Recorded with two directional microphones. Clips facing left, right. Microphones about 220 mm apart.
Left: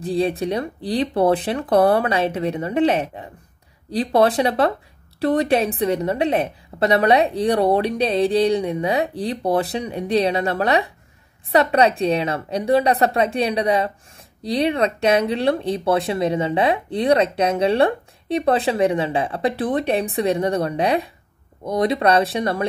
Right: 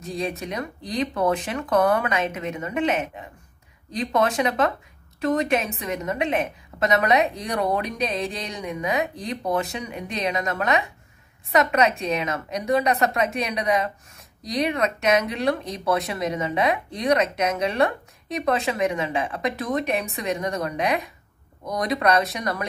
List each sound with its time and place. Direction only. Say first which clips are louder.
0.0 s speech: left 8 dB; 30° left (ahead or behind)